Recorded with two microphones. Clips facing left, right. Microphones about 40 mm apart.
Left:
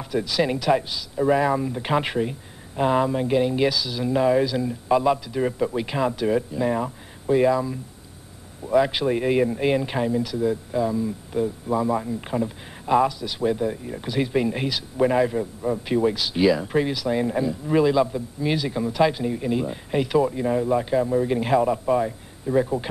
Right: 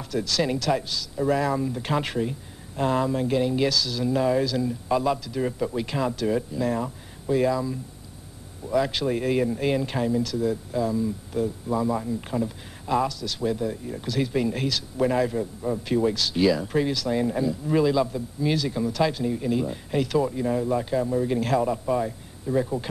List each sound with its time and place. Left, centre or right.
0.0 s speech: centre